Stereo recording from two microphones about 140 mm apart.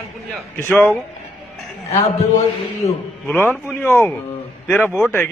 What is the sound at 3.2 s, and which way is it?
A man's voice, 15° left (ahead or behind).